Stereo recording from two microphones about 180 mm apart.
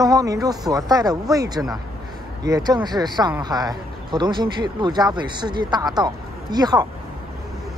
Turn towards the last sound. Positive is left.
turn(degrees=-20)  # may be behind; listen again after turning